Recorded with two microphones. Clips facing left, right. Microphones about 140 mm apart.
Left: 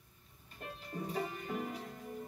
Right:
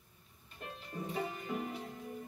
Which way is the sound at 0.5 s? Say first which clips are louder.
Left 1 dB; 40° left (ahead or behind).